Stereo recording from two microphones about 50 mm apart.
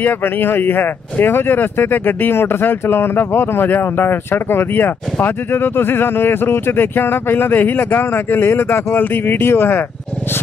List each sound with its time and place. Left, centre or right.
0.0 s speech: left